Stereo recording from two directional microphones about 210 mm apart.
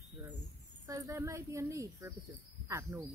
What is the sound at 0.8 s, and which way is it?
A woman's voice, 15° right (ahead or behind).